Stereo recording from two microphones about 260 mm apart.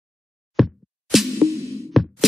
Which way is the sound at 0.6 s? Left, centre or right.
Centre.